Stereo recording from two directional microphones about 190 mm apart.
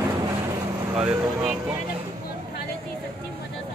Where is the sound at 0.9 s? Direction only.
5° right (ahead or behind).